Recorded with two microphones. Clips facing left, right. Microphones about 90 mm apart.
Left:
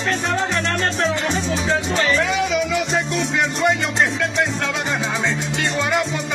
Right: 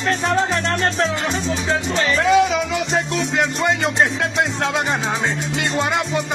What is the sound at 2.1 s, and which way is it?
Music, 30° right (ahead or behind).